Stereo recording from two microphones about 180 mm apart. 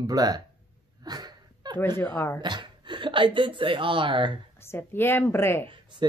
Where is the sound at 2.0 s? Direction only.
10° left (ahead or behind).